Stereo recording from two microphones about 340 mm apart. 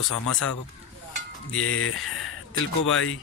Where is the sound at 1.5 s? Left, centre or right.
Left.